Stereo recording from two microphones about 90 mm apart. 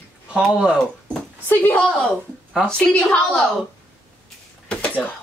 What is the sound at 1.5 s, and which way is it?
Speech, 25° left (ahead or behind).